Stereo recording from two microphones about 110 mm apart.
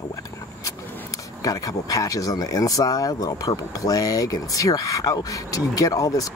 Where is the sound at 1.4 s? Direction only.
30° left (ahead or behind).